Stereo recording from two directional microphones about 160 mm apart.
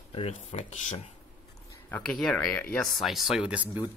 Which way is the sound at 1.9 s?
5° left (ahead or behind).